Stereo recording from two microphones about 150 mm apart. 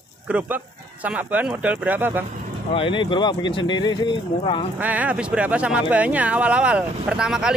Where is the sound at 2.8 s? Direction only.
35° left (ahead or behind).